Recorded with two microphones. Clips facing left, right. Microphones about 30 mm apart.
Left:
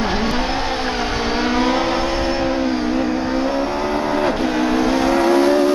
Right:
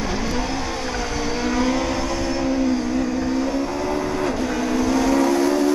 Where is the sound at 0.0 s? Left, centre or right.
Left.